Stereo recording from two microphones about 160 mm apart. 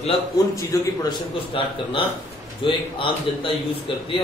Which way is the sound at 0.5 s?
20° left (ahead or behind).